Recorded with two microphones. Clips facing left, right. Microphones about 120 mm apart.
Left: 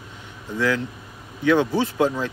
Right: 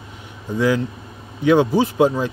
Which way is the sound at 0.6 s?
15° right (ahead or behind).